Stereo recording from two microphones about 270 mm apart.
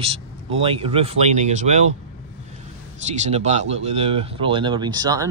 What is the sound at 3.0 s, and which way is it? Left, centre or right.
Speech, right.